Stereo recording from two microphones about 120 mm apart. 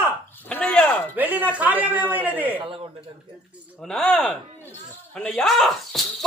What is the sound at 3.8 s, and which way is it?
Speech, 5° left (ahead or behind).